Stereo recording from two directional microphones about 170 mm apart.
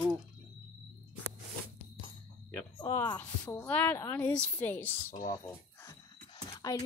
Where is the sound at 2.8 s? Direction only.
25° left (ahead or behind).